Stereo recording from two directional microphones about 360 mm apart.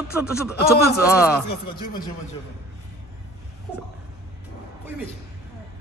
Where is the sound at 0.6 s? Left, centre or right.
Left.